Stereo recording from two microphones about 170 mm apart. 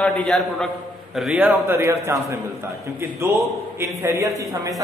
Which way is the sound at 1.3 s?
15° right (ahead or behind).